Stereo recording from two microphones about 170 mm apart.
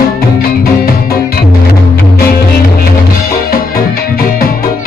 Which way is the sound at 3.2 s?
60° left (ahead or behind).